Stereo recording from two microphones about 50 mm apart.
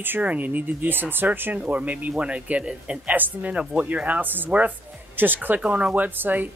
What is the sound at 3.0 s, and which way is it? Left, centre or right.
Speech, right.